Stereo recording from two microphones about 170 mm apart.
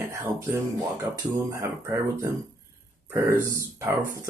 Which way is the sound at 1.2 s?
15° right (ahead or behind).